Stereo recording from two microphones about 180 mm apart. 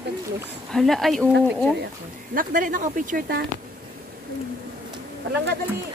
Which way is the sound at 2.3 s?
50° right (ahead or behind).